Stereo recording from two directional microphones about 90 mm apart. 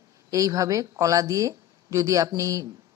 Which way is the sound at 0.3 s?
40° right (ahead or behind).